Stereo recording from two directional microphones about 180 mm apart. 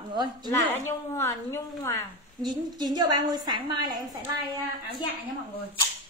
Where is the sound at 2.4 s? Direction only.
20° right (ahead or behind).